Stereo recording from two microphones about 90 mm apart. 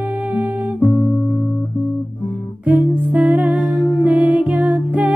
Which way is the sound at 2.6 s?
15° right (ahead or behind).